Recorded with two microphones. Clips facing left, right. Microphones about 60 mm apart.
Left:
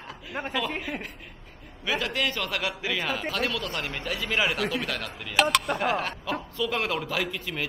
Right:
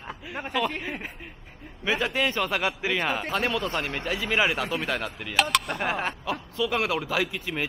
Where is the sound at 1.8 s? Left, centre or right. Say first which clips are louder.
Right 2 dB; right.